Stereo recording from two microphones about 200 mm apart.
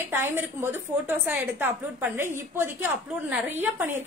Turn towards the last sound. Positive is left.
turn(degrees=-10)  # may be behind; listen again after turning